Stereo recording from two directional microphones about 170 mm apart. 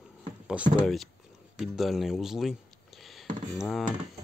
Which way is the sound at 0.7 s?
Centre (ahead or behind).